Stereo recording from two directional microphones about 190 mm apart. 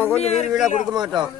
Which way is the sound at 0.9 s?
25° right (ahead or behind).